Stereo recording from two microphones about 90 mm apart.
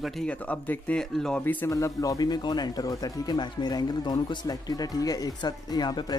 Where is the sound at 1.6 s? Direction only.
35° left (ahead or behind).